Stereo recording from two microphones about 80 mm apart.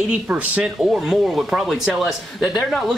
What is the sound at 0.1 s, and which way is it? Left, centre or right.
Speech, centre.